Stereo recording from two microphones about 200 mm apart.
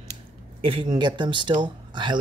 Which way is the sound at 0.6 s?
25° right (ahead or behind).